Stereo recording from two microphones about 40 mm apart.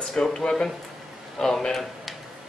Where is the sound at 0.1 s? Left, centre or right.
Centre.